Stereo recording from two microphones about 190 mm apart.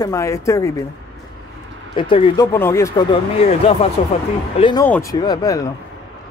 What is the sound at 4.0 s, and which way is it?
Speech, 35° left (ahead or behind).